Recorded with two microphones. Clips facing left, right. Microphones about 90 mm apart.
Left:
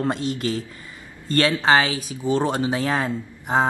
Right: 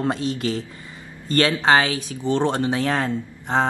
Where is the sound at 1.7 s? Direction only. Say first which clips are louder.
Right 1 dB; centre (ahead or behind).